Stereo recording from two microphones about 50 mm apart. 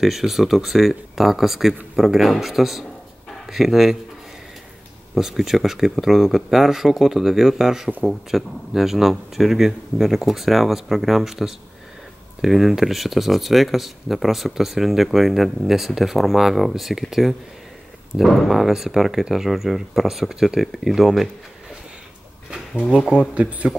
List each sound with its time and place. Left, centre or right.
0.0 s speech: centre
5.1 s speech: centre
22.5 s a sound: centre
23.3 s speech: right